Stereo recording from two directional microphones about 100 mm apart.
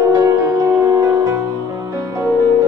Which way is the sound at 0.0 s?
30° right (ahead or behind).